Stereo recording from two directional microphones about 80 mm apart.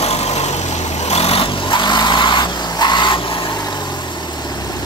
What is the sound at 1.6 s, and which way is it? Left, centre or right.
Vehicle, left.